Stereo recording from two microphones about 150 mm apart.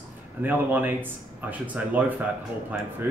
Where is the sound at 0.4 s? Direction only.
10° right (ahead or behind).